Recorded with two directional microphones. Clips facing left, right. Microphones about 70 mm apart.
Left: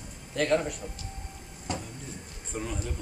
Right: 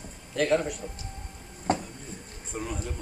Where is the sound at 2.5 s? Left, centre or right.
Centre.